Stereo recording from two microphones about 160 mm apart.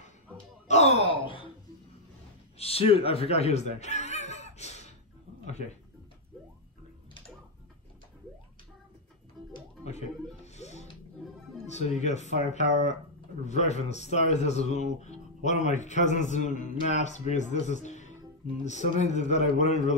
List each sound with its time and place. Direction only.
0.7 s gasp: 45° left (ahead or behind)
2.6 s speech: 40° left (ahead or behind)
3.0 s music: 40° left (ahead or behind)
9.8 s music: 45° left (ahead or behind)
11.6 s speech: 45° left (ahead or behind)